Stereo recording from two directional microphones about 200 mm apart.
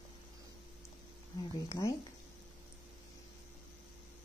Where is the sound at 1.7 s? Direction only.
15° left (ahead or behind).